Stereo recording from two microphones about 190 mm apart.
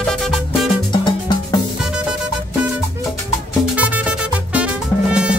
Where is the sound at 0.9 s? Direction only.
25° left (ahead or behind).